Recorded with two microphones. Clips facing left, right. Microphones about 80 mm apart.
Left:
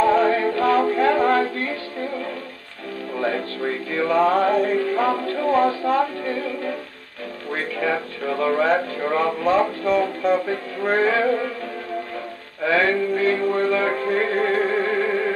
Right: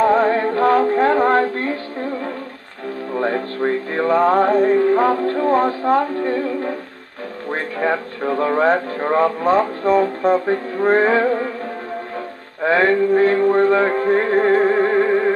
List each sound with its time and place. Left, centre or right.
0.0 s music: right
3.2 s music: right
5.2 s music: right
5.5 s speech: right
7.7 s music: right
10.4 s mantra: right
12.6 s mantra: right
14.0 s music: right